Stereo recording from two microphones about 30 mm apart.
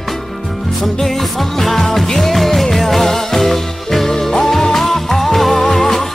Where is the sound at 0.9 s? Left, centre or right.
Centre.